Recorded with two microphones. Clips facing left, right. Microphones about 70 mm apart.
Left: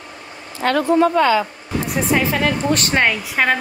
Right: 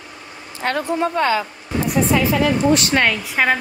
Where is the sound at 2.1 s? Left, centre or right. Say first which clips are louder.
Left 1 dB; left.